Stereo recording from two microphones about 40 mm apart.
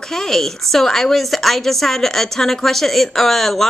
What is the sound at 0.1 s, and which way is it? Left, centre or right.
A woman's voice, centre.